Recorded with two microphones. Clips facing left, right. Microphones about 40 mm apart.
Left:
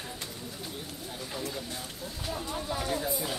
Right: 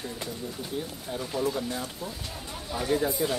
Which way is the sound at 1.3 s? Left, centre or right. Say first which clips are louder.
Right 9 dB; centre.